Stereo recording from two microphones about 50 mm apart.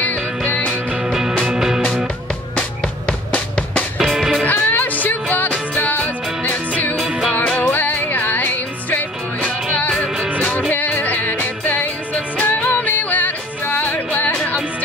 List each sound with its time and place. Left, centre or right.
1.4 s music: centre
3.3 s music: left
4.0 s music: centre
4.5 s music: left
7.7 s music: left
11.0 s music: left